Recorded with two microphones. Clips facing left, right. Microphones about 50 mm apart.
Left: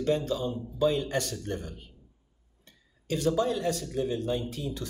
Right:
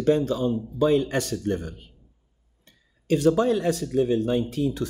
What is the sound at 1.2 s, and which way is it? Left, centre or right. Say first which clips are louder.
Speech: right 8 dB; right.